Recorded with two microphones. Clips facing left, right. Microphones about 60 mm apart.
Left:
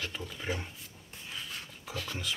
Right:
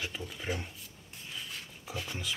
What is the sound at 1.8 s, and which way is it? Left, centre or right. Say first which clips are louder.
Speech: left 1 dB; centre.